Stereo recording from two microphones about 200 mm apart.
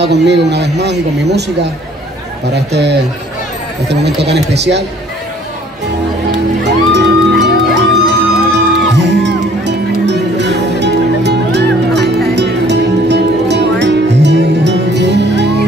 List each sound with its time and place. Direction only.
0.0 s a man's voice: 60° right (ahead or behind)
6.6 s music: 60° right (ahead or behind)